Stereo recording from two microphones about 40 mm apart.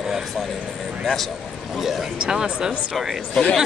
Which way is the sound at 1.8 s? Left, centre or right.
Centre.